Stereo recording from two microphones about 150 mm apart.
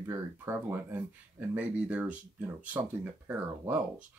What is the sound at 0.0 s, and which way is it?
Speech, 15° right (ahead or behind).